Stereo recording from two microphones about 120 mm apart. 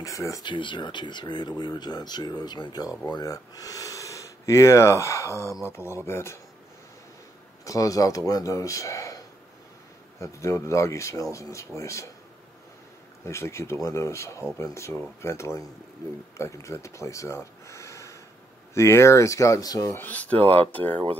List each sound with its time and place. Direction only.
0.0 s speech: 25° left (ahead or behind)
0.5 s speech: 40° left (ahead or behind); by 6.4 s 20° left (ahead or behind)
7.6 s speech: 30° left (ahead or behind)
10.2 s speech: 25° left (ahead or behind)
13.2 s speech: 25° left (ahead or behind)
19.9 s speech: 15° left (ahead or behind)